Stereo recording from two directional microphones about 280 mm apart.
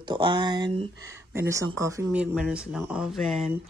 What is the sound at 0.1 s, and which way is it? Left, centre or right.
Speech, centre.